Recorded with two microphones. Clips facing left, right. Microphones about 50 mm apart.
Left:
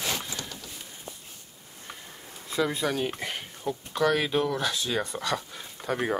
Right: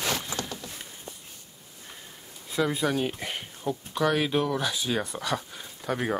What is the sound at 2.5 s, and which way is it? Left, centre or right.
Speech, centre.